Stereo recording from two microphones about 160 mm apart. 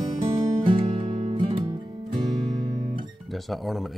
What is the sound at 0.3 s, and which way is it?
Music, 35° right (ahead or behind).